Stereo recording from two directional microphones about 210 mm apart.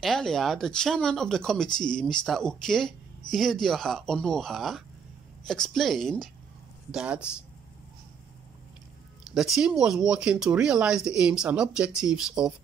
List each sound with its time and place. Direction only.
0.0 s speech: centre (ahead or behind)
9.2 s speech: centre (ahead or behind)